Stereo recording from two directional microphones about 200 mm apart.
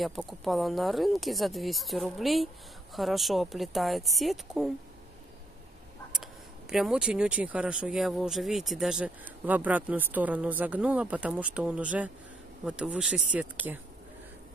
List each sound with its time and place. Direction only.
0.0 s speech: centre (ahead or behind)
6.7 s speech: 5° right (ahead or behind)